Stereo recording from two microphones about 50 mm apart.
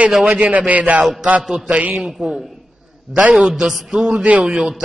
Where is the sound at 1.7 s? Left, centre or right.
Right.